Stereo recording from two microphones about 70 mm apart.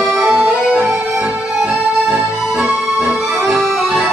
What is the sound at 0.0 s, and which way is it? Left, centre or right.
Music, centre.